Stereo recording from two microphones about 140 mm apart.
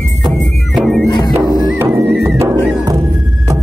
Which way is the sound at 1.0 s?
35° left (ahead or behind).